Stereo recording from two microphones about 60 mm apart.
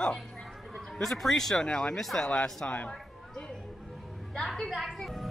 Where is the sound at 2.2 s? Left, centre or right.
Centre.